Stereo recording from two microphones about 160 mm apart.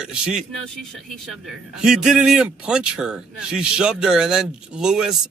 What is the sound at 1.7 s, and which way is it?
Speech, 5° right (ahead or behind).